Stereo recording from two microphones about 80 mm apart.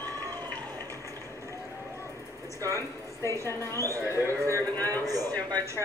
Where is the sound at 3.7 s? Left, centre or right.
Right.